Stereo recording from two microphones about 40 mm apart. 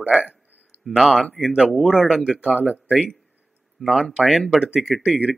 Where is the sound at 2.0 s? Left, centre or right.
Centre.